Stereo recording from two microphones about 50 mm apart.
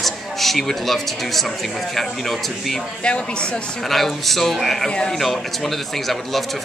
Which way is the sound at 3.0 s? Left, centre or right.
Left.